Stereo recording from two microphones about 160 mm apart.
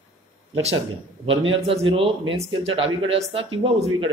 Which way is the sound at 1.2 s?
35° right (ahead or behind).